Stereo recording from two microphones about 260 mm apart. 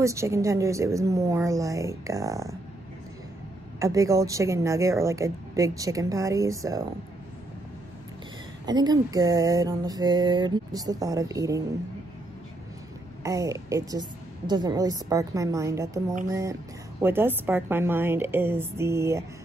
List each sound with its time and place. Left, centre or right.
0.0 s a woman's voice: centre
3.8 s a woman's voice: centre
8.6 s a woman's voice: centre
13.2 s a woman's voice: centre